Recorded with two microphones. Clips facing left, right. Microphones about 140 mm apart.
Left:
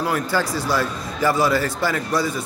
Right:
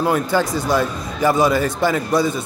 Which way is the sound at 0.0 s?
20° right (ahead or behind).